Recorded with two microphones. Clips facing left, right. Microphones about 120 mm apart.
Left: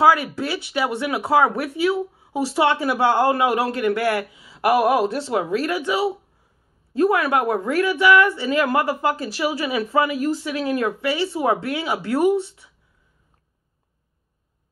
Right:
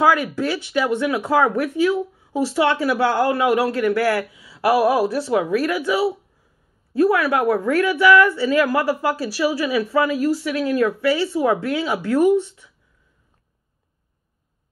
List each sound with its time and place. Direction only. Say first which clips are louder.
0.0 s a woman's voice: even; 15° left (ahead or behind)